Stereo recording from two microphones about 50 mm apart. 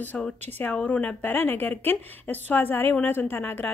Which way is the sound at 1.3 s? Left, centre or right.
Left.